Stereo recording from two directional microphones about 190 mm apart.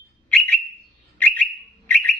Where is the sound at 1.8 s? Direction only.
10° left (ahead or behind).